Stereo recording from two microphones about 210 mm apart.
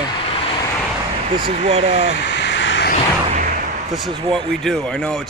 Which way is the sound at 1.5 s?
30° right (ahead or behind).